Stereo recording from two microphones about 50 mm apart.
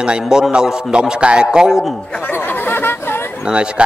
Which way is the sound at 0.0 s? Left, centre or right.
Centre.